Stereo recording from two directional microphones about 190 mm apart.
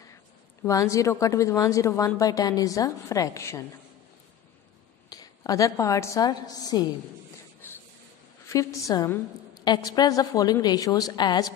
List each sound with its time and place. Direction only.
0.7 s speech: 15° left (ahead or behind)
5.1 s a woman's voice: 20° left (ahead or behind)
7.6 s a sound: 10° left (ahead or behind)
8.5 s a woman's voice: 15° left (ahead or behind)